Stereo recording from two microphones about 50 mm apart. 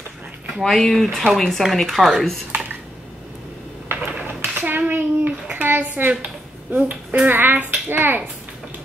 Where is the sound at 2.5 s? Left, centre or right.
Right.